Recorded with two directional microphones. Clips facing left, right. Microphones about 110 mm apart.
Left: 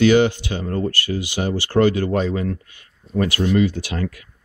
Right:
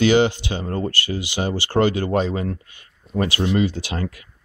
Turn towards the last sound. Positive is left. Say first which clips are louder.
# left 1 dB
turn(degrees=-25)  # may be behind; listen again after turning